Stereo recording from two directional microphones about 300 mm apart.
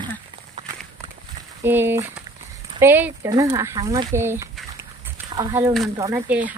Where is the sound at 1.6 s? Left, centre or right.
Centre.